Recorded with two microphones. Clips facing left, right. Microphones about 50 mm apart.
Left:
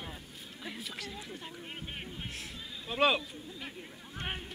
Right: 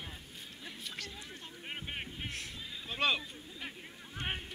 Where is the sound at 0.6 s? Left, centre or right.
Centre.